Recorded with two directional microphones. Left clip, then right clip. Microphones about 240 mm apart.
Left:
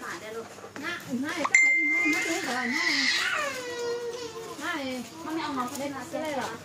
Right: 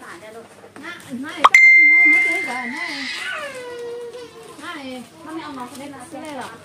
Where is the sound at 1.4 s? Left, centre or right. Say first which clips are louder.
Right 11 dB; right.